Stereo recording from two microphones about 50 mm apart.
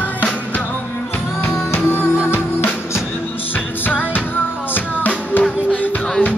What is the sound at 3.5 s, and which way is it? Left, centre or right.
Music, left.